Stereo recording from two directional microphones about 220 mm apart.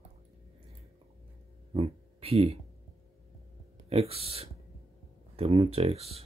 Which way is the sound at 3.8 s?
25° right (ahead or behind).